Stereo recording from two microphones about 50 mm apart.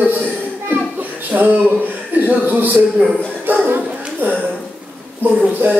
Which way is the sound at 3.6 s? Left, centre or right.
Right.